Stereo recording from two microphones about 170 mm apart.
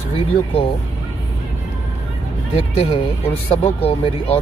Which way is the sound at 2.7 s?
35° left (ahead or behind).